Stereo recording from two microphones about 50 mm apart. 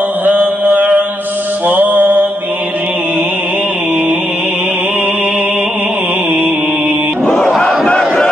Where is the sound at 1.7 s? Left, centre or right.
Right.